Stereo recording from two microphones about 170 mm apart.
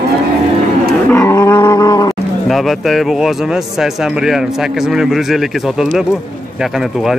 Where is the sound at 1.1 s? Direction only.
15° left (ahead or behind).